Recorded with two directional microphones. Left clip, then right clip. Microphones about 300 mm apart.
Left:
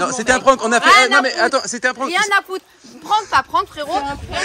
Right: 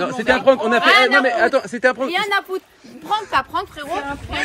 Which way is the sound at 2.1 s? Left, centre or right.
Left.